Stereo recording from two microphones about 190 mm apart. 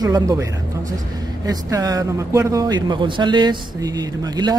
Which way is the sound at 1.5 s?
20° right (ahead or behind).